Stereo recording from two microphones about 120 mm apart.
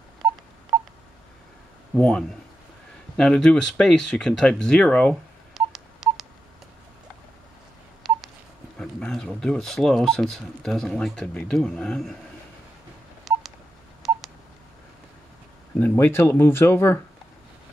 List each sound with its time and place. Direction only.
0.7 s telephone dialing: 5° right (ahead or behind)
2.0 s speech: 5° left (ahead or behind)
5.5 s telephone dialing: centre (ahead or behind)
8.0 s telephone dialing: centre (ahead or behind)
8.7 s speech: 5° left (ahead or behind)
13.3 s telephone dialing: centre (ahead or behind)
15.8 s speech: 15° left (ahead or behind)